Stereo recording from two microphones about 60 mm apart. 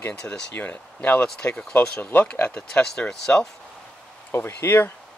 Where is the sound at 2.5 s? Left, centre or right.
Centre.